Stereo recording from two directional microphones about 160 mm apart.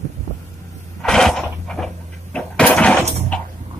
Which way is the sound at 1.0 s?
5° left (ahead or behind).